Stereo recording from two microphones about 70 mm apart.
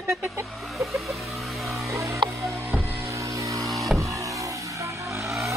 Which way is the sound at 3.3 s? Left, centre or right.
Right.